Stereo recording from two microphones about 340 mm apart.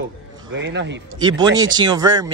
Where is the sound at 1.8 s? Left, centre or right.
Centre.